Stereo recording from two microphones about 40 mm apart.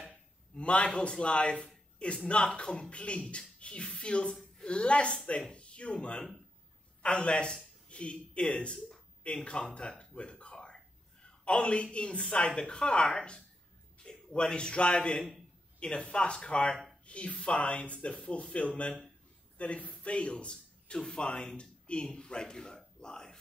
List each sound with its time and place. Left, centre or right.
0.1 s a man's voice: left
10.4 s a sound: left
11.2 s a man's voice: left
17.9 s speech: left
21.5 s a sound: left
22.1 s a man's voice: left